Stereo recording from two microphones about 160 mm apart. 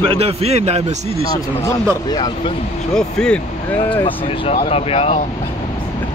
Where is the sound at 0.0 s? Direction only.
35° right (ahead or behind).